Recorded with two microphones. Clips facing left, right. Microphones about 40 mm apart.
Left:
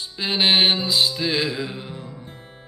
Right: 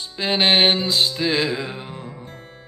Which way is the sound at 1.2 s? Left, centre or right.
Right.